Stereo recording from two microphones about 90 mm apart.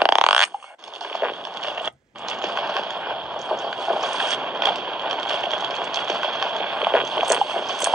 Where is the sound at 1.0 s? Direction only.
5° right (ahead or behind).